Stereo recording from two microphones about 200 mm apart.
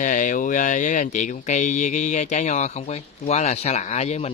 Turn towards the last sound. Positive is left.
turn(degrees=35)  # may be behind; listen again after turning